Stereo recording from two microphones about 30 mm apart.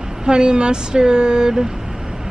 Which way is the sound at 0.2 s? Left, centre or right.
Right.